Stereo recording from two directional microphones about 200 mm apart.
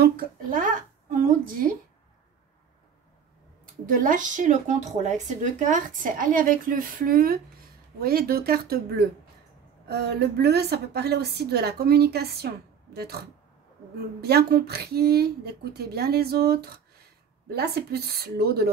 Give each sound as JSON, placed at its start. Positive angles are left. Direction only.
{"t": 0.0, "sound": "a woman's voice", "side_deg": -45}
{"t": 3.8, "sound": "a woman's voice", "side_deg": -40}
{"t": 14.2, "sound": "a woman's voice", "side_deg": -50}